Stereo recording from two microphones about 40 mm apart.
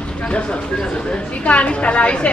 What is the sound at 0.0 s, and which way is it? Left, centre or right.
Speech, left.